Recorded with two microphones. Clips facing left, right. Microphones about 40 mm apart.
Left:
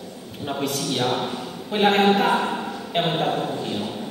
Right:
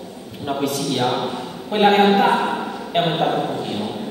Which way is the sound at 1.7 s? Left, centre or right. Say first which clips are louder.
Right 4 dB; centre.